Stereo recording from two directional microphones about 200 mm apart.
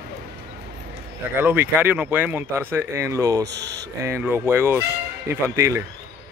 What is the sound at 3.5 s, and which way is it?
Speech, 60° right (ahead or behind).